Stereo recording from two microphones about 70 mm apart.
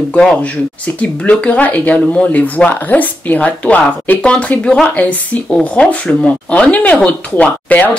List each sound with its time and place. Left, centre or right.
0.1 s speech: centre